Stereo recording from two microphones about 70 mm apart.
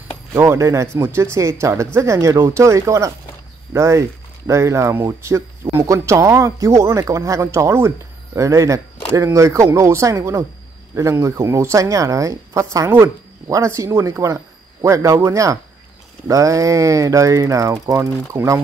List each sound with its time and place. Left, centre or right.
0.3 s speech: right